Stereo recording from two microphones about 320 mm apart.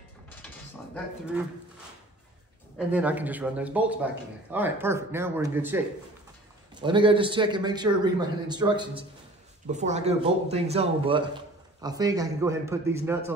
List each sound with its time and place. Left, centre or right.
2.9 s speech: centre
6.8 s a man's voice: centre